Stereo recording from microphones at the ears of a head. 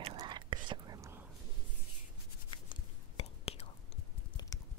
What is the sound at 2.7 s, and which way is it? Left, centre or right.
Whispering, left.